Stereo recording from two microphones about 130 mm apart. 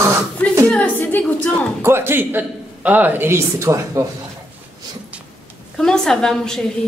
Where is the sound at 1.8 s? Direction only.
20° right (ahead or behind).